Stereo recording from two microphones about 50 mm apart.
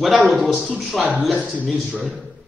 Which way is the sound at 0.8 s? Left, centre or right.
Right.